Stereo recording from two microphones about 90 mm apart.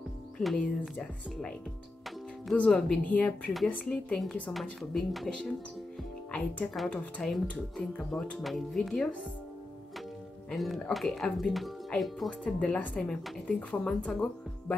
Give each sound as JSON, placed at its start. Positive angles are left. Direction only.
{"t": 0.4, "sound": "a woman's voice", "side_deg": 0}
{"t": 2.5, "sound": "a woman's voice", "side_deg": 10}
{"t": 6.3, "sound": "a woman's voice", "side_deg": 5}
{"t": 10.5, "sound": "a woman's voice", "side_deg": 0}
{"t": 12.3, "sound": "a woman's voice", "side_deg": 10}